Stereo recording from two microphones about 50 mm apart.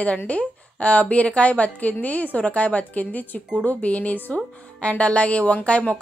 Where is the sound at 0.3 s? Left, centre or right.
Left.